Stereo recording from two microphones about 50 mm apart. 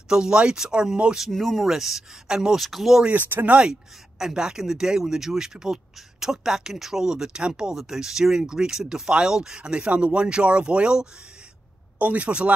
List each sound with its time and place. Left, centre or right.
0.1 s speech: centre
1.3 s speech: centre
2.6 s speech: centre
3.4 s speech: right
4.2 s speech: centre